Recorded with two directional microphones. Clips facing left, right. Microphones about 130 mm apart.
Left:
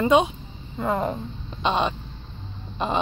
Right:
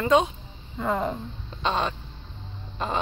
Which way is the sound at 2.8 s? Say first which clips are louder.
Left 3 dB; 20° left (ahead or behind).